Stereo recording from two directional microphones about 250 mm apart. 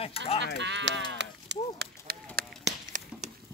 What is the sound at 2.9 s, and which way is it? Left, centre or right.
Chop, right.